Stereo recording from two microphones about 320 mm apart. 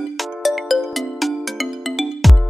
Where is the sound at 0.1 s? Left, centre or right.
Centre.